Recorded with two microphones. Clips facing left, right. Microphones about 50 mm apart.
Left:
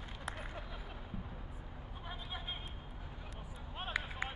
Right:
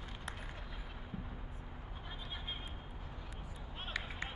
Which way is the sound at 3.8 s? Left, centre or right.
Centre.